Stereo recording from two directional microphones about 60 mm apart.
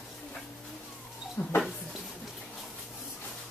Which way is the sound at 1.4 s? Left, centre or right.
Left.